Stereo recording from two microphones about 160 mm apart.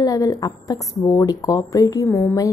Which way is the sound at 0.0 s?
20° left (ahead or behind).